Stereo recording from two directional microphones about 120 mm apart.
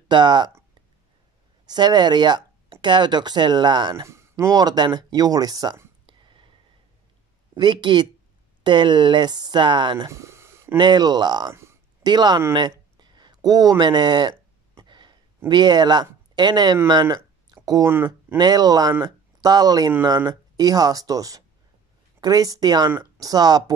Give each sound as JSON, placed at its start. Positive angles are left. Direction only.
{"t": 0.1, "sound": "speech", "side_deg": -40}
{"t": 1.7, "sound": "speech", "side_deg": -35}
{"t": 4.0, "sound": "speech", "side_deg": -25}
{"t": 6.0, "sound": "a sound", "side_deg": -40}
{"t": 7.5, "sound": "speech", "side_deg": -40}
{"t": 10.0, "sound": "a sound", "side_deg": -25}
{"t": 10.8, "sound": "speech", "side_deg": -35}
{"t": 11.5, "sound": "a sound", "side_deg": -20}
{"t": 12.0, "sound": "speech", "side_deg": -35}
{"t": 14.8, "sound": "a sound", "side_deg": -40}
{"t": 16.7, "sound": "speech", "side_deg": -35}
{"t": 17.8, "sound": "speech", "side_deg": -20}
{"t": 18.4, "sound": "speech", "side_deg": -35}